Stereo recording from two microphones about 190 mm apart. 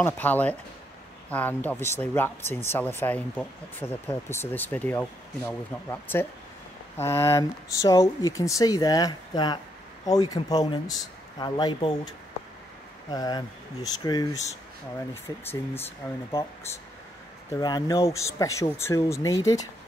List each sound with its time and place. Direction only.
0.0 s speech: 10° left (ahead or behind)
13.1 s speech: 20° left (ahead or behind)
17.6 s speech: 20° left (ahead or behind)